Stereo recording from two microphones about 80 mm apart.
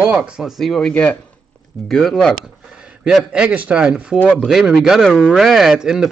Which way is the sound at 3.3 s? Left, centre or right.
Centre.